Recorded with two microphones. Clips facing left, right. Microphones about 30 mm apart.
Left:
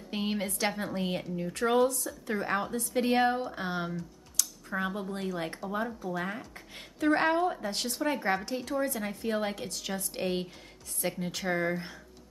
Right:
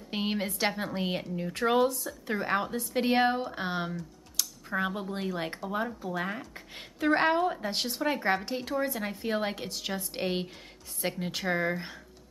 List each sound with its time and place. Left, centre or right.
0.1 s speech: right
4.4 s a sound: centre
5.1 s speech: centre